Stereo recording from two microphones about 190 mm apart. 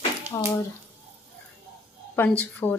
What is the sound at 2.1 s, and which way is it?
Speech, 10° left (ahead or behind).